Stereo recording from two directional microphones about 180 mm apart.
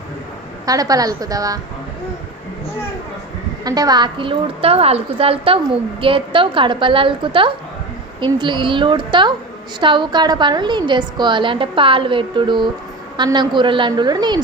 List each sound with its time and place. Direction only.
0.7 s a woman's voice: 20° right (ahead or behind)
3.6 s a woman's voice: 20° right (ahead or behind)